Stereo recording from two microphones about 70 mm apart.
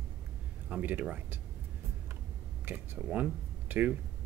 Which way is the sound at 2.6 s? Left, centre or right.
Right.